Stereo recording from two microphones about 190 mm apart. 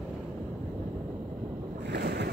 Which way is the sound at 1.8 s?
60° right (ahead or behind).